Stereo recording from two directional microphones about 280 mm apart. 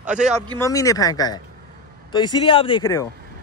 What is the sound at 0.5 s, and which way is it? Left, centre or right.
Speech, centre.